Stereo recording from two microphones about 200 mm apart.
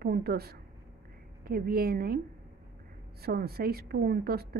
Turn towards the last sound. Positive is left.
turn(degrees=-50)  # may be behind; listen again after turning